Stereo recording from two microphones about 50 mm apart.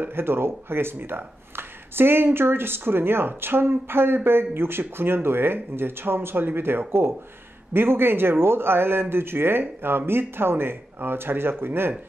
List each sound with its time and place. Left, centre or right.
0.1 s speech: right